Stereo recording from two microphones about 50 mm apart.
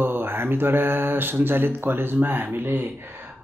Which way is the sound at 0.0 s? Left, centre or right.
Right.